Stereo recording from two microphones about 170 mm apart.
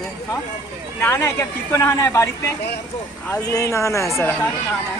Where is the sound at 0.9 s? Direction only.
15° left (ahead or behind).